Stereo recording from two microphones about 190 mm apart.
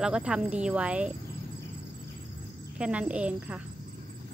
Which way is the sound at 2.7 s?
5° right (ahead or behind).